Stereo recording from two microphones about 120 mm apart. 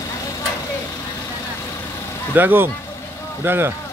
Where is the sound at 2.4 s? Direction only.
15° right (ahead or behind).